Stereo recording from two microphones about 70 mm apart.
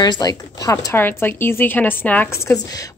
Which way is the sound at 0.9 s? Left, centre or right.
Left.